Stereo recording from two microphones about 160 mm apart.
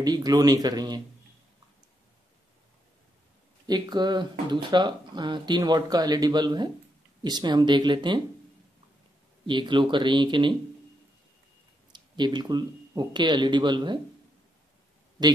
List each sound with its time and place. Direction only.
0.0 s speech: 25° right (ahead or behind)
3.6 s speech: 25° right (ahead or behind)
9.5 s speech: 30° right (ahead or behind)
11.9 s speech: 25° right (ahead or behind)